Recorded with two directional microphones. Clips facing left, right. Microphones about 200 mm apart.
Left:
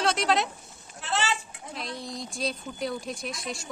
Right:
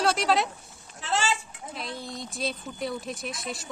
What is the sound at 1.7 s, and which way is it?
Speech, centre (ahead or behind).